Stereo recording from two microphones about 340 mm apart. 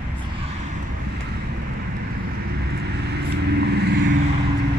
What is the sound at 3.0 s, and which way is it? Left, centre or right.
Vehicle, right.